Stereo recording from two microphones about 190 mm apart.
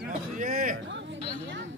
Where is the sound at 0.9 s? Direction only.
70° right (ahead or behind).